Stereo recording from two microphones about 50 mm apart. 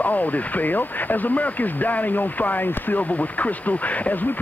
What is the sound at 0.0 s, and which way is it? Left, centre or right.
Speech, left.